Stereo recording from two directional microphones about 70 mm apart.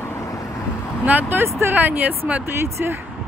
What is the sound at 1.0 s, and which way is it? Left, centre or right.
Speech, right.